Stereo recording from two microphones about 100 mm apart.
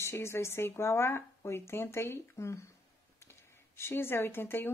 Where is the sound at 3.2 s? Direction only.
25° left (ahead or behind).